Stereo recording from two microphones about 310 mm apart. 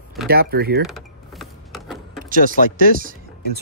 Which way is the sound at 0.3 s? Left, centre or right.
Right.